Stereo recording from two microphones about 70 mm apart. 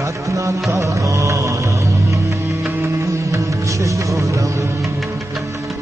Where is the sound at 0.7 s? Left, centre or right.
Right.